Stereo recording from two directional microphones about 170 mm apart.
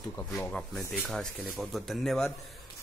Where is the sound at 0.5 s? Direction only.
5° left (ahead or behind).